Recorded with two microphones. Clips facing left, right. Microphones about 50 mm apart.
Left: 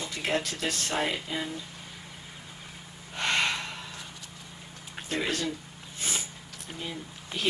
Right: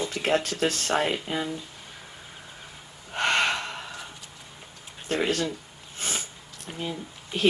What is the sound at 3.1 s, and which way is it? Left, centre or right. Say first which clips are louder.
Gasp: right 4 dB; right.